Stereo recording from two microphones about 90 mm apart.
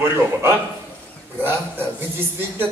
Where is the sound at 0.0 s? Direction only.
30° right (ahead or behind).